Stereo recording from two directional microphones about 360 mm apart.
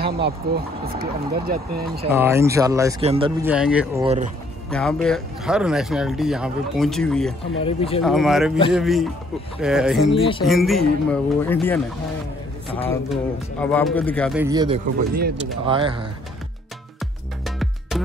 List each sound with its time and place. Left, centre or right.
0.0 s speech: right
2.0 s speech: centre
3.5 s speech: centre
4.0 s speech: centre
4.6 s speech: centre
7.6 s speech: centre
8.0 s speech: centre
10.1 s speech: centre
10.4 s speech: centre
17.6 s music: centre